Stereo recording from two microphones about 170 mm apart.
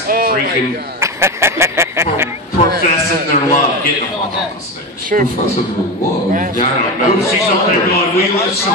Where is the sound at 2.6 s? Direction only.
40° left (ahead or behind).